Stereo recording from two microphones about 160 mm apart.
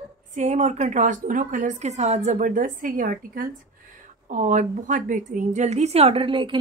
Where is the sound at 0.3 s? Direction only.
45° right (ahead or behind).